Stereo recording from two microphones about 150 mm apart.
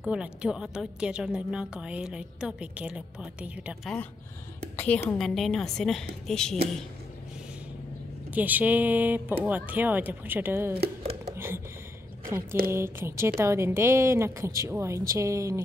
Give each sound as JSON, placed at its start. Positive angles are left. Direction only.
{"t": 0.0, "sound": "a woman's voice", "side_deg": -5}
{"t": 4.7, "sound": "a woman's voice", "side_deg": 10}
{"t": 8.3, "sound": "a woman's voice", "side_deg": -10}
{"t": 10.8, "sound": "a sound", "side_deg": -40}
{"t": 11.3, "sound": "a sound", "side_deg": -15}
{"t": 12.7, "sound": "a woman's voice", "side_deg": -15}